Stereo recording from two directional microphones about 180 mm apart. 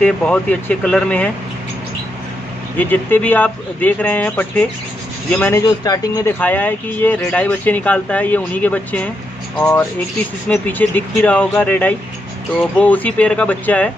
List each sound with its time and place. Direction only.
0.0 s speech: 5° left (ahead or behind)
2.8 s speech: 10° left (ahead or behind)
5.9 s speech: 20° left (ahead or behind)
6.4 s speech: 10° left (ahead or behind)